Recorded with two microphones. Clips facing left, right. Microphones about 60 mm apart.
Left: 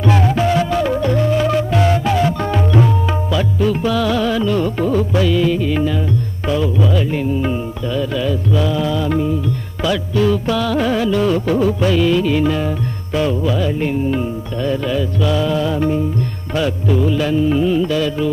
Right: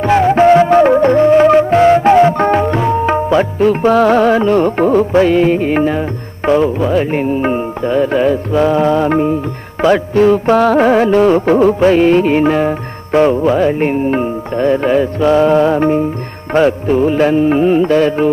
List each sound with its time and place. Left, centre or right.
0.0 s music: right